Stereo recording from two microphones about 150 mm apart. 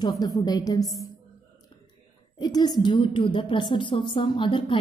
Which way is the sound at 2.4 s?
30° left (ahead or behind).